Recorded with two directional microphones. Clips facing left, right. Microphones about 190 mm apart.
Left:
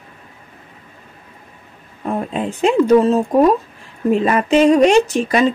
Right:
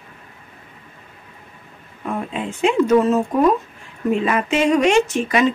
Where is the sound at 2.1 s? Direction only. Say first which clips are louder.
Left 4 dB; 35° left (ahead or behind).